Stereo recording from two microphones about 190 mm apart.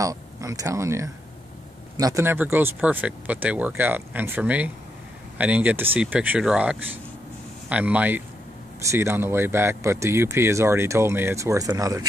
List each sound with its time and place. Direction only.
0.0 s speech: 15° right (ahead or behind)